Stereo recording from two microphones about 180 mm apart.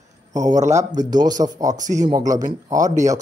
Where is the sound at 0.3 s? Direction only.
20° right (ahead or behind).